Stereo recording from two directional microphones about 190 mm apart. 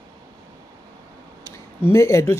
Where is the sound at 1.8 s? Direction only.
15° left (ahead or behind).